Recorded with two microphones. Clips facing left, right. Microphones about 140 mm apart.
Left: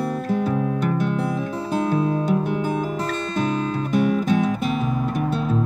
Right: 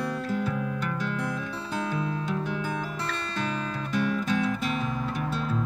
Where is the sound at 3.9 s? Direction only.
50° left (ahead or behind).